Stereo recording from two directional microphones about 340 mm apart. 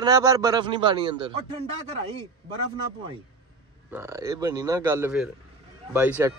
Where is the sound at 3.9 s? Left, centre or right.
Centre.